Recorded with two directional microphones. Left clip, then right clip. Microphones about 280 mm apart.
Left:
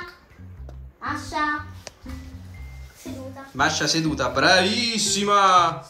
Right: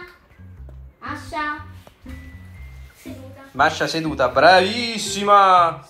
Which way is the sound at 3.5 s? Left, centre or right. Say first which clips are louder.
Right 3 dB; centre.